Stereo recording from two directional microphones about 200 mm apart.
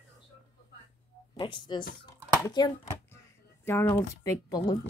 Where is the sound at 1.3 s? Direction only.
25° left (ahead or behind).